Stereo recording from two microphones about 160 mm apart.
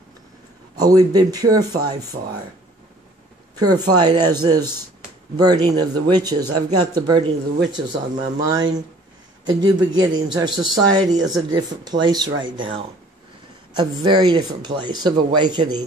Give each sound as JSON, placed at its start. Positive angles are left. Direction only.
{"t": 0.7, "sound": "speech", "side_deg": -25}
{"t": 3.5, "sound": "speech", "side_deg": -25}